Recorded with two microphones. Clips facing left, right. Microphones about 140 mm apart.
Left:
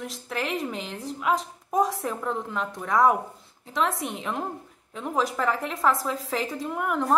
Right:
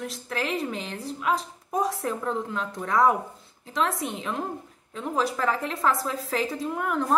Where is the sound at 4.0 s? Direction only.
15° left (ahead or behind).